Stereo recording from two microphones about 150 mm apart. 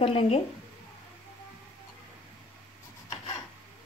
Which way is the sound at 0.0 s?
40° left (ahead or behind).